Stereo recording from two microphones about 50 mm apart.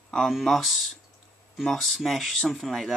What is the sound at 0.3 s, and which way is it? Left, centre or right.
Speech, centre.